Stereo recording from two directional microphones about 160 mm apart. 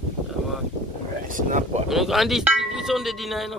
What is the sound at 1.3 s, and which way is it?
Speech, 55° right (ahead or behind).